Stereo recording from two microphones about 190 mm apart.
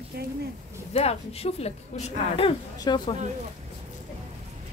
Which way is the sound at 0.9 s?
35° left (ahead or behind).